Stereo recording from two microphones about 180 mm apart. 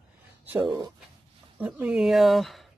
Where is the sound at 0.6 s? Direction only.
25° right (ahead or behind).